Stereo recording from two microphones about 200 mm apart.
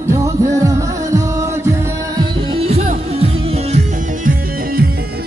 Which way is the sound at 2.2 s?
30° right (ahead or behind).